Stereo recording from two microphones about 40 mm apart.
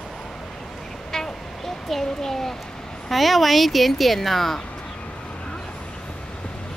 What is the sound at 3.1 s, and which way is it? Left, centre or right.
Speech, centre.